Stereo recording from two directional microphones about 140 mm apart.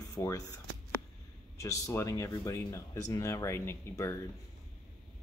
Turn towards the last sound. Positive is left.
turn(degrees=20)  # may be behind; listen again after turning